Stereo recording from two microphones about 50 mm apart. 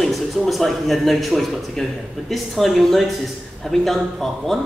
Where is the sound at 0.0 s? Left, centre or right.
Centre.